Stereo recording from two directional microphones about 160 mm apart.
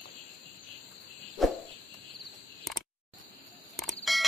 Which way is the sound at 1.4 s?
Centre (ahead or behind).